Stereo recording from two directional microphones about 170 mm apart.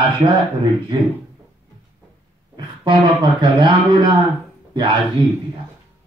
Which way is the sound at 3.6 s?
25° right (ahead or behind).